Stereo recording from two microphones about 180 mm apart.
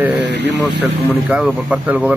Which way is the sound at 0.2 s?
70° right (ahead or behind).